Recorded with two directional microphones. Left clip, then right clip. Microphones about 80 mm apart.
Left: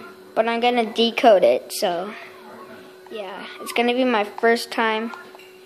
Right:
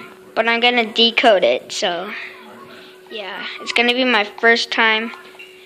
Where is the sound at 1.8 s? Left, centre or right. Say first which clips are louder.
Right 2 dB; left.